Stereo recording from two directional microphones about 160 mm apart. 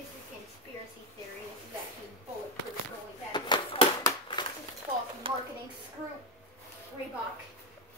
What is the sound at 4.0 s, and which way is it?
Crushing, 25° left (ahead or behind).